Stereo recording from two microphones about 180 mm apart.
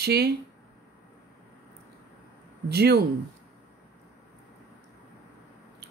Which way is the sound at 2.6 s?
65° right (ahead or behind).